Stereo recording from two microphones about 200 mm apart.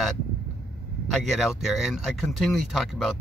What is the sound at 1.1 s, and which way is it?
A man's voice, centre (ahead or behind).